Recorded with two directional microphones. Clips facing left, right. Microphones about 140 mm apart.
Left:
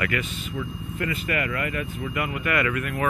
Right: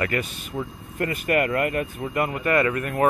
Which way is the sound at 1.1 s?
50° right (ahead or behind).